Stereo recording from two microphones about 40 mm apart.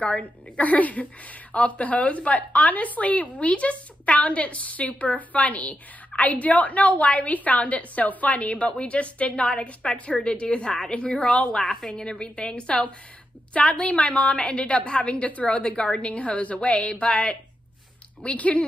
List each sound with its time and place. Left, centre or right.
0.0 s a woman's voice: left